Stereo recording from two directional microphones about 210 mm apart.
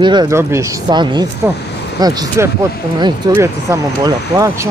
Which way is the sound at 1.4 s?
10° right (ahead or behind).